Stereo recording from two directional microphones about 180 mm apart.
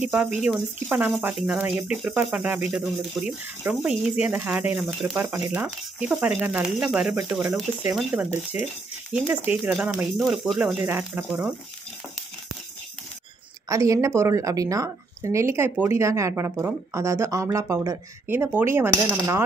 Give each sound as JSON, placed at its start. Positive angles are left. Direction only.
{"t": 0.4, "sound": "speech", "side_deg": -5}
{"t": 13.7, "sound": "speech", "side_deg": -15}